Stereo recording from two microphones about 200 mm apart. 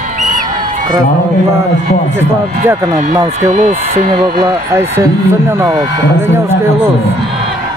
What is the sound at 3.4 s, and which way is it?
Speech, 35° right (ahead or behind).